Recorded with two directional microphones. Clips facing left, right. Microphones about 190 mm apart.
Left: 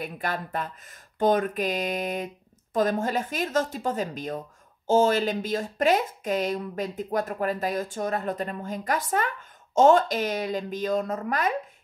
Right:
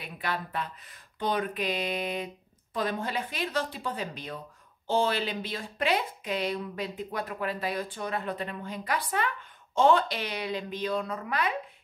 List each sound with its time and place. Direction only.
0.0 s speech: 45° left (ahead or behind)